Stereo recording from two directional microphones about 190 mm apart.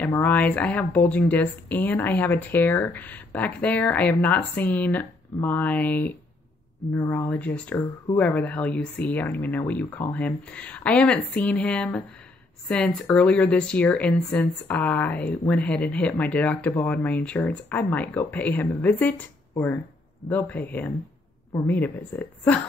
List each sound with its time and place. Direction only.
0.0 s speech: 10° left (ahead or behind)